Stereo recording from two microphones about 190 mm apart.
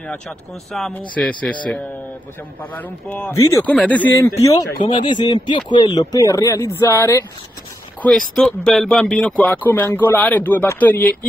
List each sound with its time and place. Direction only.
0.7 s speech: centre (ahead or behind)
2.6 s speech: 10° left (ahead or behind)
8.0 s speech: centre (ahead or behind)